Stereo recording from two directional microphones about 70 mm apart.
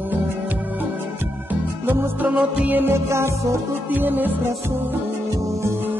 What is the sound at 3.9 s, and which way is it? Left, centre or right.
Music, right.